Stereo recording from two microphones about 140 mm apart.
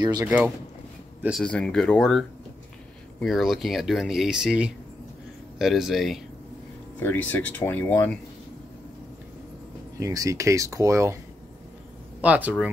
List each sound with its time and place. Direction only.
0.2 s speech: 10° right (ahead or behind)
1.4 s speech: 5° left (ahead or behind)
7.0 s speech: 15° left (ahead or behind)
9.9 s speech: 25° right (ahead or behind)
12.2 s speech: 10° right (ahead or behind)